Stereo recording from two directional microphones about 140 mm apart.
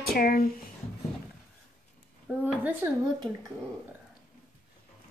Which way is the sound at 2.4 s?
10° right (ahead or behind).